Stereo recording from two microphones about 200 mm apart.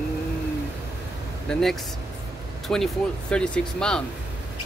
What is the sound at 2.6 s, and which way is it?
Speech, centre (ahead or behind).